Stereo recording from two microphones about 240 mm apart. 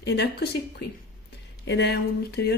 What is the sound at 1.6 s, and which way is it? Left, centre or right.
Speech, left.